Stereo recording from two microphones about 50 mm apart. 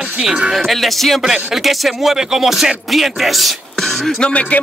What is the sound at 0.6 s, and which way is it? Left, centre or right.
Speech, centre.